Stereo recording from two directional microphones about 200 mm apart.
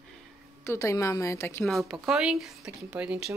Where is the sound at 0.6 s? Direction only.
15° left (ahead or behind).